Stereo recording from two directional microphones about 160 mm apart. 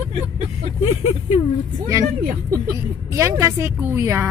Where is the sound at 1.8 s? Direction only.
20° right (ahead or behind).